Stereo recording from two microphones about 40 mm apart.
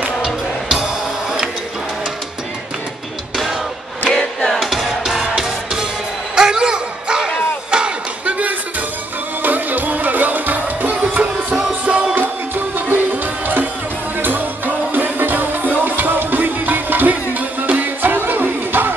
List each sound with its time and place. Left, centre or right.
0.2 s music: centre
4.1 s battle cry: centre
4.6 s music: centre
5.3 s music: centre
7.7 s a sound: right
8.4 s music: right
11.9 s music: right
12.2 s music: right